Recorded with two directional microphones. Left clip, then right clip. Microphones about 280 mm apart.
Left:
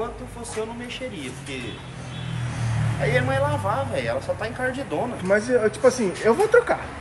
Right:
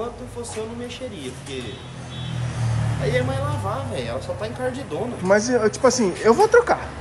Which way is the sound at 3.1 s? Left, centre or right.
Centre.